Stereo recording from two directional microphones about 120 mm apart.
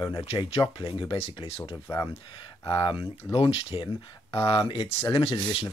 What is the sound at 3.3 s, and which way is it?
Speech, 45° left (ahead or behind).